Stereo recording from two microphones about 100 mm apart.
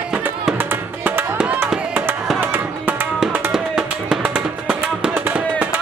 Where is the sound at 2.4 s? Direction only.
20° right (ahead or behind).